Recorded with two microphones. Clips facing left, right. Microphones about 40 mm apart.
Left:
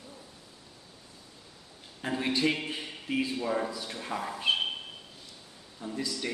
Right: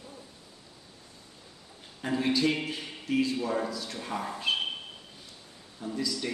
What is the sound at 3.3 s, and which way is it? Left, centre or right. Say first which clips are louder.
Speech: even; centre.